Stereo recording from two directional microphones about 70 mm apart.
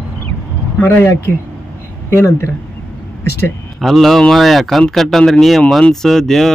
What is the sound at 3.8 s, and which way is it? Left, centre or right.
Speech, centre.